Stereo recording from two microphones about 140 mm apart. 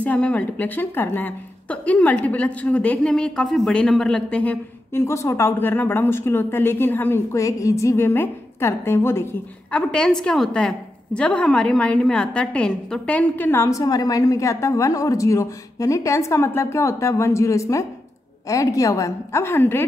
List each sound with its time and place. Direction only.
0.0 s a woman's voice: 10° left (ahead or behind)